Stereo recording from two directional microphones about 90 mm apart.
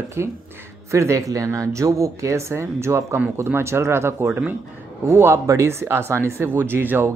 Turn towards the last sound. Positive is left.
turn(degrees=-25)  # may be behind; listen again after turning